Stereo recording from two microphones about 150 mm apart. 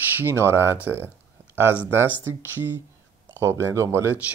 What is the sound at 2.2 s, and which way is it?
Speech, 15° right (ahead or behind).